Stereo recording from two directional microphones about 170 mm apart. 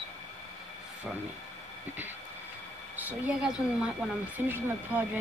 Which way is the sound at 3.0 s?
10° right (ahead or behind).